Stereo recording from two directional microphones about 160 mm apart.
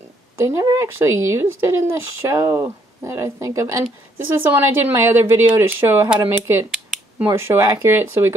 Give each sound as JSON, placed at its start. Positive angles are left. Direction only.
{"t": 0.4, "sound": "speech", "side_deg": -20}